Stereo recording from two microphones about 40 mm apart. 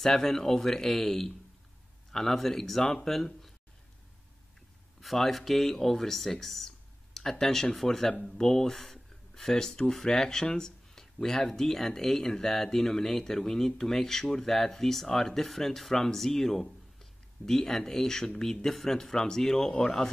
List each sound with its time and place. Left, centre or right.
0.0 s speech: centre
5.0 s speech: centre